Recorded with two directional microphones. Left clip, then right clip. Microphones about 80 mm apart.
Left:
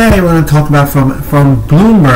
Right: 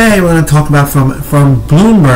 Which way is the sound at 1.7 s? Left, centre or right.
Centre.